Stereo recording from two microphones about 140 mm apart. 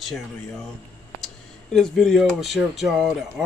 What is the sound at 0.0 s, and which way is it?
Speech, centre (ahead or behind).